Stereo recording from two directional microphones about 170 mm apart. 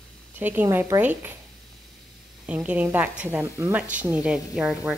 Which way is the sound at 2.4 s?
10° right (ahead or behind).